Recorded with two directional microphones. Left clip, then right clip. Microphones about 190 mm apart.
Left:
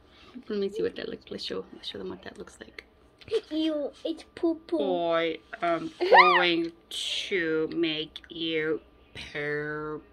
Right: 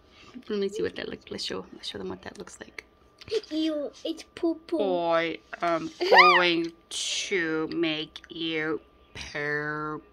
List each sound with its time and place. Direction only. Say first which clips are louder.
0.5 s speech: even; 40° right (ahead or behind)